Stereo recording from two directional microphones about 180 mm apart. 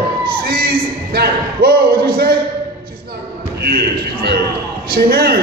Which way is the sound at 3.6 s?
60° right (ahead or behind).